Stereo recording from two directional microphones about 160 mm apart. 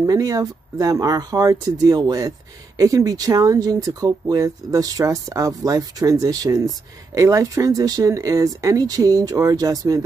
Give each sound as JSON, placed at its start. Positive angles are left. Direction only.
{"t": 0.0, "sound": "speech", "side_deg": -20}